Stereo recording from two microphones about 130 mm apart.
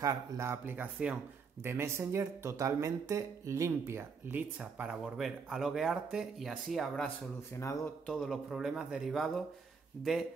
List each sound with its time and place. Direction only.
0.0 s speech: 25° right (ahead or behind)
1.6 s speech: 20° right (ahead or behind); by 7.1 s centre (ahead or behind)
7.5 s speech: 20° left (ahead or behind)
8.1 s speech: centre (ahead or behind)